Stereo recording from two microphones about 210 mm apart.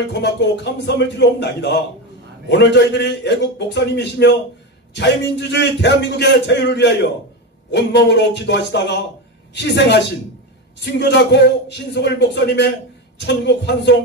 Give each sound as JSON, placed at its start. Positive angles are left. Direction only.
{"t": 0.1, "sound": "a man's voice", "side_deg": 55}